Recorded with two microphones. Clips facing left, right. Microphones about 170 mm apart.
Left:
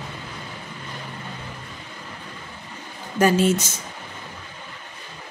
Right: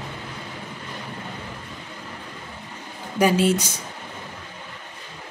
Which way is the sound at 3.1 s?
15° right (ahead or behind).